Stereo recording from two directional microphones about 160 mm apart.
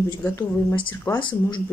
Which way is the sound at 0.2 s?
15° left (ahead or behind).